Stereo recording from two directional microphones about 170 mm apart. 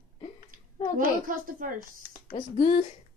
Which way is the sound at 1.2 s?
55° right (ahead or behind).